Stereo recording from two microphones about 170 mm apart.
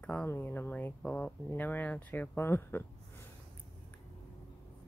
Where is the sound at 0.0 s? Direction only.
10° left (ahead or behind).